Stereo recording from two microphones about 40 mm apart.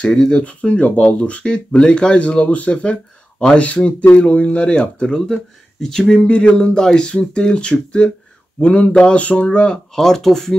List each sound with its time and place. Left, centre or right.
0.3 s speech: left
1.4 s speech: left
6.1 s speech: left
9.9 s speech: centre